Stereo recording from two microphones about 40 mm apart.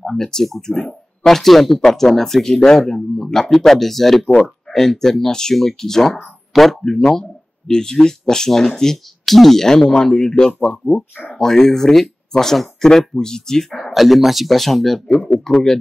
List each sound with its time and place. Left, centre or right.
0.0 s speech: centre
10.7 s speech: left
11.3 s speech: centre